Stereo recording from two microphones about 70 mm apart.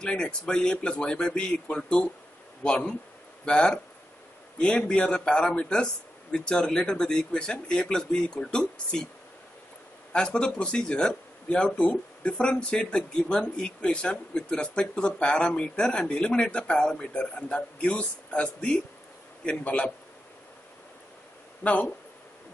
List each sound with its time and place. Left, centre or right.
0.0 s speech: centre
10.1 s a man's voice: centre
21.6 s a man's voice: left